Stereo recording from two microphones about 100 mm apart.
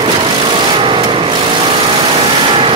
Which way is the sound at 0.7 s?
60° right (ahead or behind).